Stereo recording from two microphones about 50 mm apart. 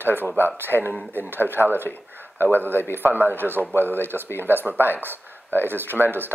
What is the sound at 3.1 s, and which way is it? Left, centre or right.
Speech, right.